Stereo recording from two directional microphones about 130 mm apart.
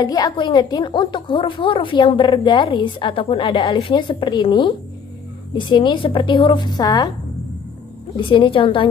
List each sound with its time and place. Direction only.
0.0 s a woman's voice: 30° left (ahead or behind)
8.3 s a woman's voice: 40° left (ahead or behind)